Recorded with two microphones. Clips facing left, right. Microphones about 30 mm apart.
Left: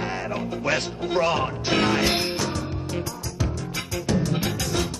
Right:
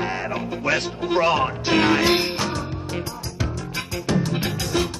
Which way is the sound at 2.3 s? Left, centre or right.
Right.